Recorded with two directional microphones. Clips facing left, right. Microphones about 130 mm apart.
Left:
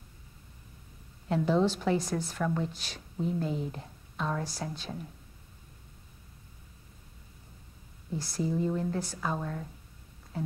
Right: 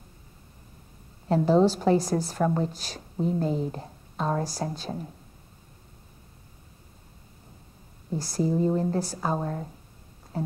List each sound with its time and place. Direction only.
1.3 s a woman's voice: 40° right (ahead or behind)
8.1 s a woman's voice: 40° right (ahead or behind)
10.3 s a sound: 40° right (ahead or behind)